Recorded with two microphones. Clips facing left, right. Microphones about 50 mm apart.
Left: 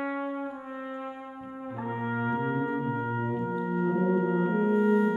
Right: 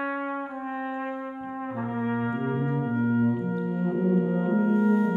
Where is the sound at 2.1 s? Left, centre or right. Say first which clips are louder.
Left 2 dB; centre.